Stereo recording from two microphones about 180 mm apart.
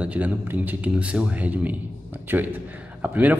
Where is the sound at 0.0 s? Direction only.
10° right (ahead or behind).